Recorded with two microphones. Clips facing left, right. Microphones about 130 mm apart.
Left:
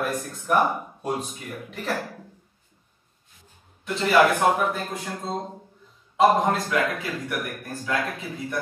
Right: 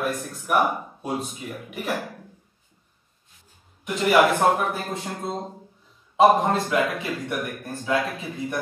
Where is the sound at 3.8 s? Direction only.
15° right (ahead or behind).